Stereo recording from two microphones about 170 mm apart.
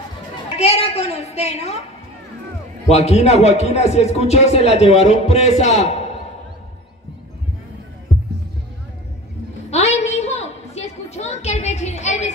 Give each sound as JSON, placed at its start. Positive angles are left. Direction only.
{"t": 0.6, "sound": "speech", "side_deg": 35}
{"t": 2.9, "sound": "speech", "side_deg": 40}
{"t": 9.7, "sound": "a sound", "side_deg": 40}